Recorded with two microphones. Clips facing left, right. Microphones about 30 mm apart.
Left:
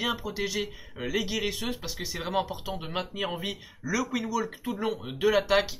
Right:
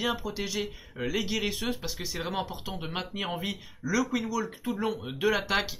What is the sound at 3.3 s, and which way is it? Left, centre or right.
Speech, centre.